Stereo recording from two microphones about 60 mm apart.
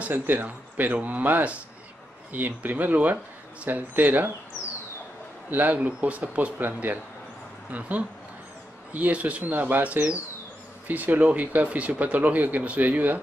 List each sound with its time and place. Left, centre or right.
0.1 s speech: right
5.5 s speech: right
8.9 s speech: right